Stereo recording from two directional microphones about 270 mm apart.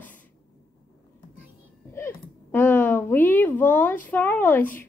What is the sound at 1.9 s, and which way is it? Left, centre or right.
A woman's voice, centre.